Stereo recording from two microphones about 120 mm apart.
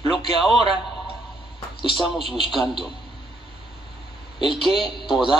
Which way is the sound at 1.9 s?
Centre (ahead or behind).